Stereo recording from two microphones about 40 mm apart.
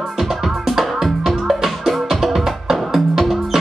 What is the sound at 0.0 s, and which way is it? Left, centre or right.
Music, centre.